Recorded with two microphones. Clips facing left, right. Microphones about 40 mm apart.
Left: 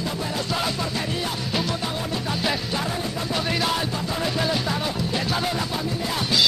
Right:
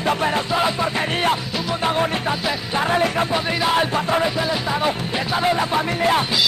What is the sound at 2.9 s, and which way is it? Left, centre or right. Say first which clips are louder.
Music: right 9 dB; right.